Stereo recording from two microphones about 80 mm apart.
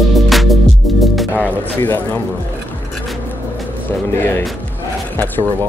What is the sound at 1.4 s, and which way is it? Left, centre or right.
Speech, left.